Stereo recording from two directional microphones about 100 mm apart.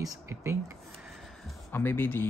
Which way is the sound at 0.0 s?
35° right (ahead or behind).